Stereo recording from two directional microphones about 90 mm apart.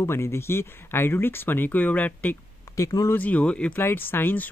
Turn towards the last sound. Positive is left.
turn(degrees=20)  # may be behind; listen again after turning